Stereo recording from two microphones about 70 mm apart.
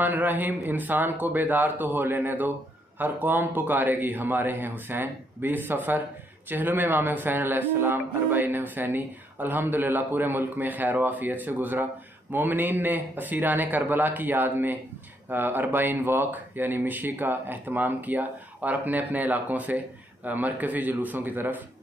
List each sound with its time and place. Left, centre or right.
0.0 s speech: right